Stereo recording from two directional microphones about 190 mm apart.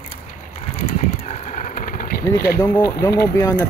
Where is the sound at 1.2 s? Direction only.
40° left (ahead or behind).